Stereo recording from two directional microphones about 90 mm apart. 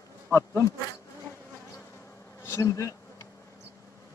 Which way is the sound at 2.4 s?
35° left (ahead or behind).